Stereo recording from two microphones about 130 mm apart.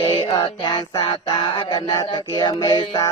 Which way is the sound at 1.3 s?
30° left (ahead or behind).